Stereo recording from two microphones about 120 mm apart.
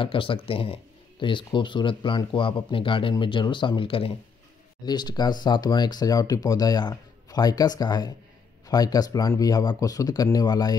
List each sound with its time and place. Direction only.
0.0 s speech: 45° left (ahead or behind)
4.8 s speech: 35° left (ahead or behind)